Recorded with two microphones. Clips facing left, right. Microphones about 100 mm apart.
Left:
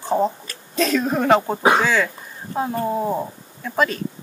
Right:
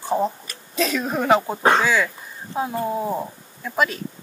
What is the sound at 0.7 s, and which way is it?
Speech, centre (ahead or behind).